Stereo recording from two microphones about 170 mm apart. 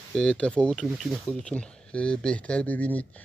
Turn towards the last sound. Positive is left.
turn(degrees=10)  # may be behind; listen again after turning